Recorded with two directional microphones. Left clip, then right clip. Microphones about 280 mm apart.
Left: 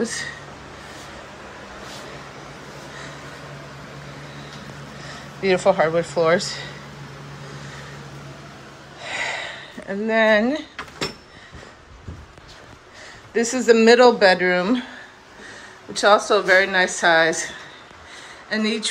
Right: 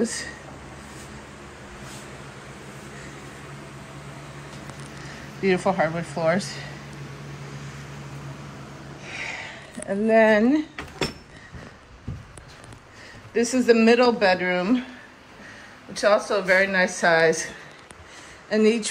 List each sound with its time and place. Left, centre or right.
0.0 s speech: centre
5.4 s speech: centre
9.0 s a sound: centre
9.8 s speech: centre
13.3 s speech: centre
15.9 s speech: centre
18.5 s speech: centre